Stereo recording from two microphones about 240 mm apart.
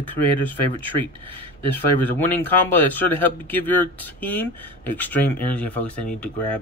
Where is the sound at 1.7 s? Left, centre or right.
Centre.